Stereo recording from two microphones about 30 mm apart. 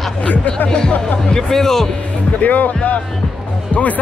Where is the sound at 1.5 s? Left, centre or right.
Centre.